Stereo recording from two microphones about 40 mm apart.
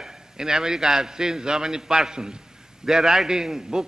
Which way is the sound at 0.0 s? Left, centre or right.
Centre.